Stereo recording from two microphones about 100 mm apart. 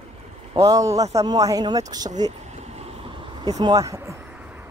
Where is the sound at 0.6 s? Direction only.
35° right (ahead or behind).